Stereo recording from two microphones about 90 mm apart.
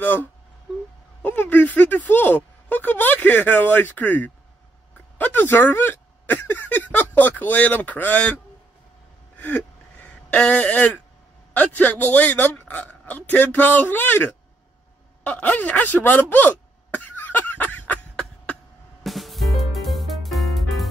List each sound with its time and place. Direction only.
0.0 s speech: 20° left (ahead or behind)
9.4 s gasp: 15° left (ahead or behind)
11.5 s speech: 20° left (ahead or behind)
15.2 s a sound: 15° left (ahead or behind)
19.0 s music: centre (ahead or behind)